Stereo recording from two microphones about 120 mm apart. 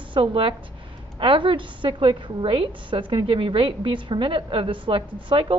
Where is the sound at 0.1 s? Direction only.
45° right (ahead or behind).